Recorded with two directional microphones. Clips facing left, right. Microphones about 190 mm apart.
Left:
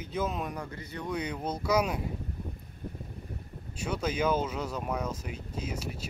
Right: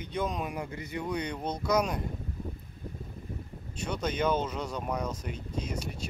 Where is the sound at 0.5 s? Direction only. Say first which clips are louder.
Right 3 dB; 15° right (ahead or behind).